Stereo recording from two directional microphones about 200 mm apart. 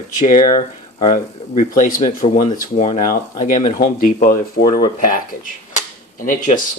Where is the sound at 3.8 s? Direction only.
40° left (ahead or behind).